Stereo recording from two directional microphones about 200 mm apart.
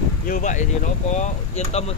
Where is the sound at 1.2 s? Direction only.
35° left (ahead or behind).